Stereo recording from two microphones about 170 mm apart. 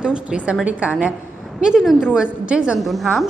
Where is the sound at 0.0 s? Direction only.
5° right (ahead or behind).